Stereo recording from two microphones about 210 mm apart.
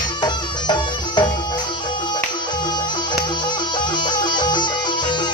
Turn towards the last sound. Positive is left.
turn(degrees=20)  # may be behind; listen again after turning